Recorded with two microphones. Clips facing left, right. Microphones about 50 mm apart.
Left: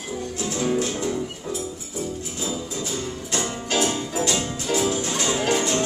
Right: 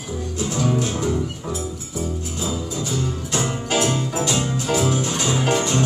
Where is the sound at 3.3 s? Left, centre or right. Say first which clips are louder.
Right 2 dB; centre.